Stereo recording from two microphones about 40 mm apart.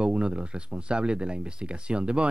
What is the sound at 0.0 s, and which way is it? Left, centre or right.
Speech, right.